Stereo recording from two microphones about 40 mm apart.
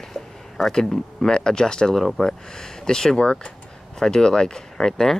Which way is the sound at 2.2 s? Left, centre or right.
Centre.